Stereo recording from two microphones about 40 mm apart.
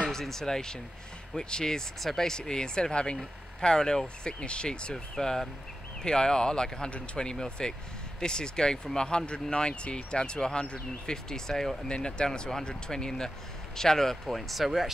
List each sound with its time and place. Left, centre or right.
0.1 s speech: centre
2.0 s speech: centre; by 4.9 s left
4.9 s speech: centre